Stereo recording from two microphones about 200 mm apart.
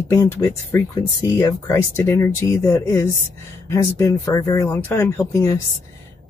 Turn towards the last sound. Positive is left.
turn(degrees=15)  # may be behind; listen again after turning